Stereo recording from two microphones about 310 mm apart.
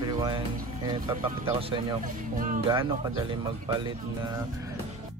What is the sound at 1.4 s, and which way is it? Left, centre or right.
Speech, centre.